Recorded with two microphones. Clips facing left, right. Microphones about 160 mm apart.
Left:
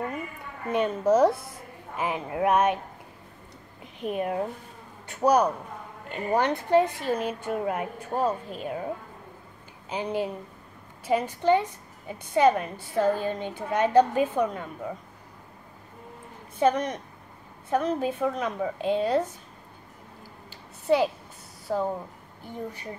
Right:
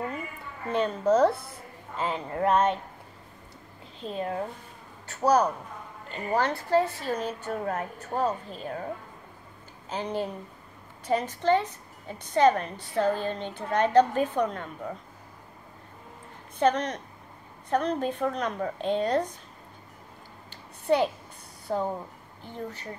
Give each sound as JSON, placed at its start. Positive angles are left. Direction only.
{"t": 0.7, "sound": "a woman's voice", "side_deg": 10}
{"t": 3.8, "sound": "a man's voice", "side_deg": 15}
{"t": 9.8, "sound": "a woman's voice", "side_deg": 10}
{"t": 16.5, "sound": "a woman's voice", "side_deg": 10}
{"t": 20.4, "sound": "a sound", "side_deg": 5}
{"t": 21.6, "sound": "speech", "side_deg": 5}